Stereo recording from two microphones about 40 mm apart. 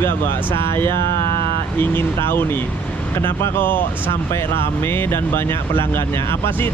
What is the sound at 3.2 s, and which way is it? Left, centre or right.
Speech, left.